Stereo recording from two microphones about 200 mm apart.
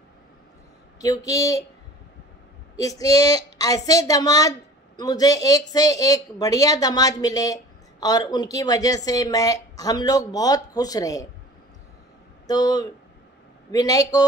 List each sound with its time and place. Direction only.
0.9 s a woman's voice: 15° left (ahead or behind)
2.8 s a woman's voice: 15° left (ahead or behind)
12.4 s a woman's voice: 20° left (ahead or behind)